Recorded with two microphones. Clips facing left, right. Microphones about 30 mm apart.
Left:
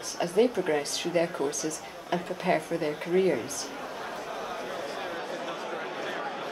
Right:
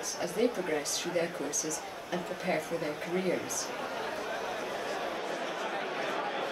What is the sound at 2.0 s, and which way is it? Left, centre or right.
Speech, left.